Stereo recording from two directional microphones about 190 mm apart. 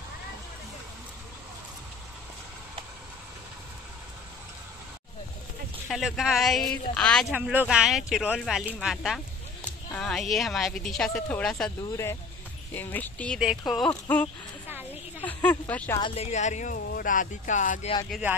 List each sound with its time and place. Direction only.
5.9 s speech: centre (ahead or behind)
12.7 s speech: 10° left (ahead or behind)
14.7 s a sound: 10° right (ahead or behind)
15.2 s speech: 10° left (ahead or behind)
16.0 s speech: 35° left (ahead or behind)